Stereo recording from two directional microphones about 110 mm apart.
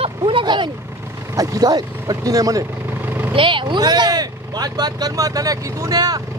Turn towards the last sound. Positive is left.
turn(degrees=-35)  # may be behind; listen again after turning